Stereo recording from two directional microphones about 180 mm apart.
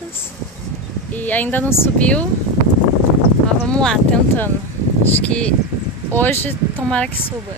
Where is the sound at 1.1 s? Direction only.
10° left (ahead or behind).